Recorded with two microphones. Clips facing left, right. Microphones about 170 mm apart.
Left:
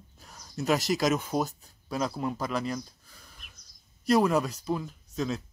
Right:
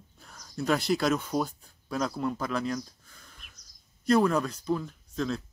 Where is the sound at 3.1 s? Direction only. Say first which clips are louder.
Left 1 dB; 5° left (ahead or behind).